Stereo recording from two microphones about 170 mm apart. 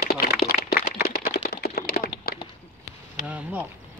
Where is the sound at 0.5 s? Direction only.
10° right (ahead or behind).